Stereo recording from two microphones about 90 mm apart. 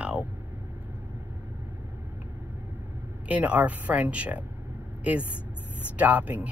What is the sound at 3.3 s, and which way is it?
Speech, 15° right (ahead or behind).